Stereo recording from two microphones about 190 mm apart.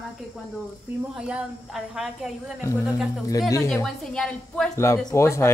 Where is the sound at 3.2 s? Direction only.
15° left (ahead or behind).